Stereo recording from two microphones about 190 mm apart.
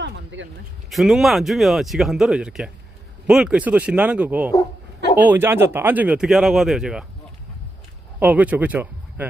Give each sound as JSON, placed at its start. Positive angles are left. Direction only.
{"t": 0.0, "sound": "a sound", "side_deg": -75}
{"t": 0.8, "sound": "speech", "side_deg": 0}
{"t": 8.2, "sound": "speech", "side_deg": -10}